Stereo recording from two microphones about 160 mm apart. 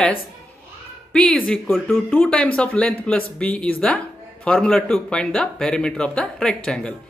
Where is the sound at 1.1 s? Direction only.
5° left (ahead or behind).